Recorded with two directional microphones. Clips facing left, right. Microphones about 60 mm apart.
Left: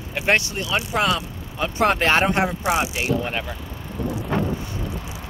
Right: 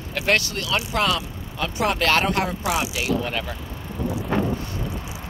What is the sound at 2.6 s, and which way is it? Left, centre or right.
Speech, left.